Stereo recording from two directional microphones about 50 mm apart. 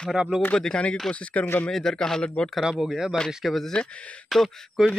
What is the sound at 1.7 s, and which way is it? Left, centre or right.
Speech, centre.